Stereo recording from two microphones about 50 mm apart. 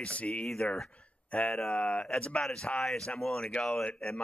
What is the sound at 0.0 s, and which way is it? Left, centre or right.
Speech, left.